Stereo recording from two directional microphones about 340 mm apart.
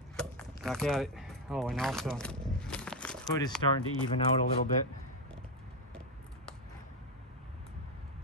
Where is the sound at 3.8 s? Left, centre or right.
Left.